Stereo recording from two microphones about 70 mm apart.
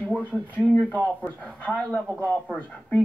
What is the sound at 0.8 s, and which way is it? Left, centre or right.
A man's voice, left.